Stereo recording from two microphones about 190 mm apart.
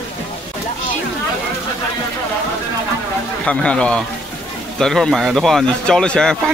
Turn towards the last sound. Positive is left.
turn(degrees=5)  # may be behind; listen again after turning